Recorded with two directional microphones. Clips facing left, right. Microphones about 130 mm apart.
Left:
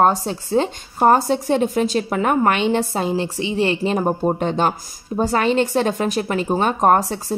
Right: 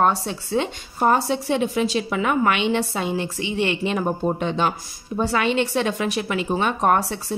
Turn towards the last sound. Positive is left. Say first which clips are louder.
# left 4 dB
turn(degrees=40)  # may be behind; listen again after turning